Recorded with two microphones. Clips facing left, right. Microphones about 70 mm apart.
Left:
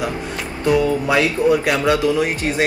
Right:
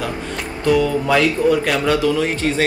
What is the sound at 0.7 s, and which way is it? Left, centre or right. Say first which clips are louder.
Speech: right 1 dB; centre.